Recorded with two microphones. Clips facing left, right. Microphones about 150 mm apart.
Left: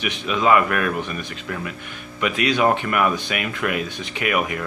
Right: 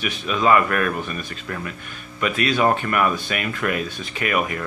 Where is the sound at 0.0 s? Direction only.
15° left (ahead or behind).